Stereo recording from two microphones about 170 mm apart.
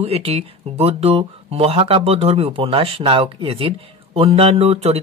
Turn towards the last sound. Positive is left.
turn(degrees=-40)  # may be behind; listen again after turning